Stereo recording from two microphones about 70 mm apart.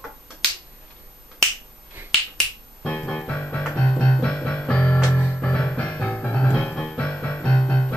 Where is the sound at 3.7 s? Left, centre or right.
Left.